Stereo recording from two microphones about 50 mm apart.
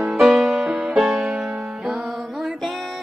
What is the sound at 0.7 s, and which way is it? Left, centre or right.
Music, right.